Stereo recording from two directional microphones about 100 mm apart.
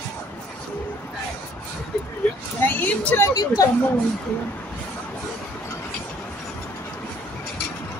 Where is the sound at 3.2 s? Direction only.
35° left (ahead or behind).